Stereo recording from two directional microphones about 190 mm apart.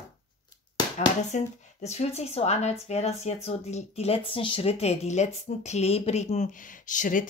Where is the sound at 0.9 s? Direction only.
35° left (ahead or behind).